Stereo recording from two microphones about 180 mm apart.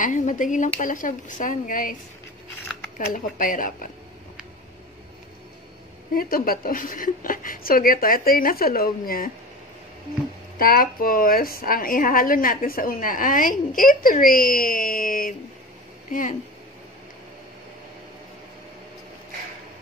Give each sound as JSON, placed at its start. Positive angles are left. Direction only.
{"t": 0.0, "sound": "a woman's voice", "side_deg": 45}
{"t": 3.1, "sound": "a woman's voice", "side_deg": 50}
{"t": 6.1, "sound": "a woman's voice", "side_deg": 55}
{"t": 10.6, "sound": "a woman's voice", "side_deg": 55}